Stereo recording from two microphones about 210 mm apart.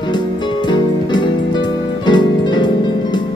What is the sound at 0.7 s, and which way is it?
Music, 20° left (ahead or behind).